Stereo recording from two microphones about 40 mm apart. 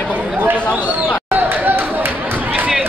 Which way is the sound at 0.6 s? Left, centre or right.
Left.